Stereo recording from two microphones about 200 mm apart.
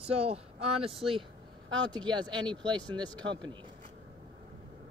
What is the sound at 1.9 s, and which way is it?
Speech, 20° right (ahead or behind).